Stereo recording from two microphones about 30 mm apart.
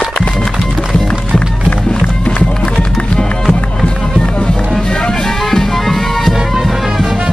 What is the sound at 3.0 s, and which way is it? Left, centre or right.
Music, left.